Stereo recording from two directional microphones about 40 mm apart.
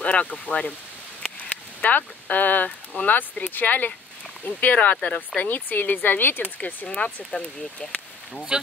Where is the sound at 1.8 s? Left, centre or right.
Left.